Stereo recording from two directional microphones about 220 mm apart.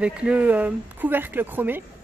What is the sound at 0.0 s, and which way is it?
Speech, 5° right (ahead or behind).